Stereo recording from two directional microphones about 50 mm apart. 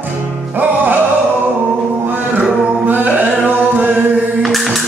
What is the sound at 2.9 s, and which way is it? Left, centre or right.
Chant, right.